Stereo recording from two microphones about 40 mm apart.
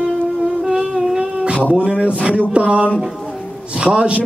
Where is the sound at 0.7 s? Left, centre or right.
Centre.